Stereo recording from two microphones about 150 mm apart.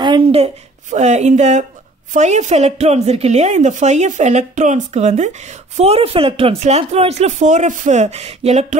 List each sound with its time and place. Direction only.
0.0 s a woman's voice: 35° right (ahead or behind)